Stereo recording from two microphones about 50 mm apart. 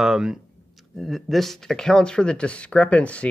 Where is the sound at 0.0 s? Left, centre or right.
Centre.